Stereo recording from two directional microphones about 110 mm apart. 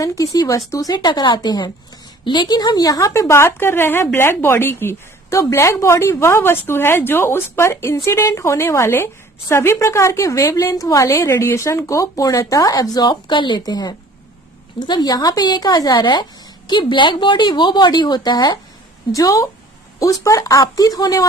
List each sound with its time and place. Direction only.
0.0 s speech: 30° left (ahead or behind)
0.9 s a woman's voice: 40° left (ahead or behind)